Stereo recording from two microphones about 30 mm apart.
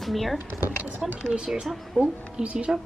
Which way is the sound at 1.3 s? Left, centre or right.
Right.